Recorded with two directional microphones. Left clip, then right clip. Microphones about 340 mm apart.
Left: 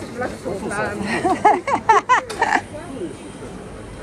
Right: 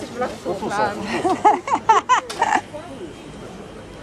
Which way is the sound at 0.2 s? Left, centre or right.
Centre.